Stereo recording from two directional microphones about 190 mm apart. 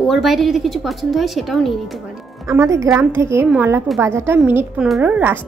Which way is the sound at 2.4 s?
15° right (ahead or behind).